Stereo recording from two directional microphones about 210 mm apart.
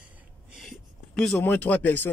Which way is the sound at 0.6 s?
Centre (ahead or behind).